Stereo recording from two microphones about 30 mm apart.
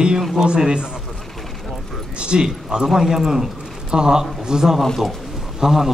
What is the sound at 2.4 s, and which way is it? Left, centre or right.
Speech, centre.